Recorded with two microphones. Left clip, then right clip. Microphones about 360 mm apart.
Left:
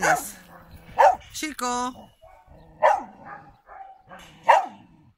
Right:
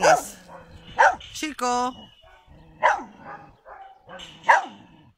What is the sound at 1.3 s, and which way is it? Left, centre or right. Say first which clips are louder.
Speech: right 3 dB; centre.